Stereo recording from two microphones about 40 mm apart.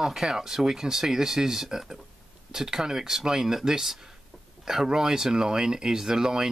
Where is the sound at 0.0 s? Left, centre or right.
Centre.